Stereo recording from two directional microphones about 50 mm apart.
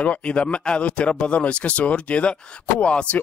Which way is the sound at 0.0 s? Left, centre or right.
Left.